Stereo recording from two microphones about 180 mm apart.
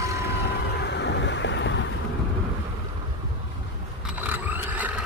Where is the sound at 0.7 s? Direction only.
70° left (ahead or behind); by 1.8 s 85° left.